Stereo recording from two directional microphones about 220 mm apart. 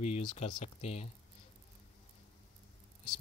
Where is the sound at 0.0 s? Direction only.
25° left (ahead or behind).